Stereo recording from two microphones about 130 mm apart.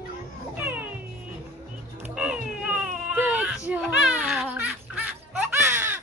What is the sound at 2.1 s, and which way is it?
Baby cry, 10° right (ahead or behind).